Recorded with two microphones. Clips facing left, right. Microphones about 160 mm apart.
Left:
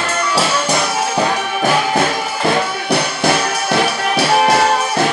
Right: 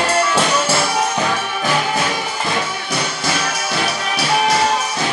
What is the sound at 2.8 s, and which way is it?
Music, 65° left (ahead or behind).